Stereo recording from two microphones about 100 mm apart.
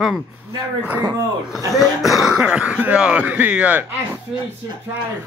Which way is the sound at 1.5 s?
Centre (ahead or behind).